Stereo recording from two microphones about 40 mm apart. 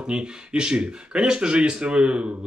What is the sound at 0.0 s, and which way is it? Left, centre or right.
Speech, right.